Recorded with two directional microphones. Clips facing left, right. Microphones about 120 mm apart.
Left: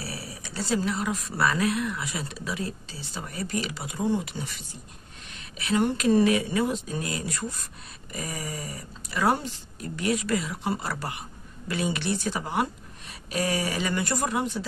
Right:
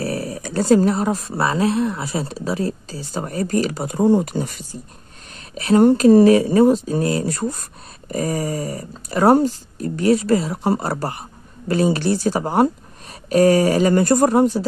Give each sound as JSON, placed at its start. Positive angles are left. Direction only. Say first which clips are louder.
{"t": 0.0, "sound": "speech", "louder": "right 13 dB", "side_deg": -50}